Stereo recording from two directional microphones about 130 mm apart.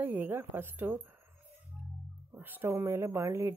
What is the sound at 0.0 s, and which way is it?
Speech, 15° right (ahead or behind).